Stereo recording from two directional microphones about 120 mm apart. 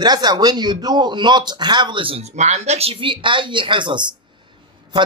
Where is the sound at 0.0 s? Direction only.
35° right (ahead or behind).